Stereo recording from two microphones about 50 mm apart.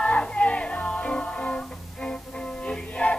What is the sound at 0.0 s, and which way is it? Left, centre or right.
Music, left.